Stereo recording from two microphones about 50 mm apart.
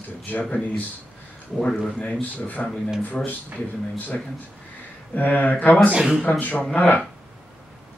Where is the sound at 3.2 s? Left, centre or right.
Centre.